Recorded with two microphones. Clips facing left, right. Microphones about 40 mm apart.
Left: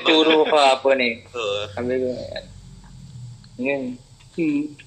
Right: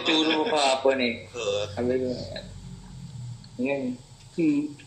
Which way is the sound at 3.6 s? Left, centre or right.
Left.